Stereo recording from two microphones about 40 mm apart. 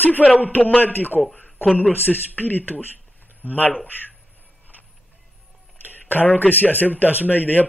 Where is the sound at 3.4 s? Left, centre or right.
Right.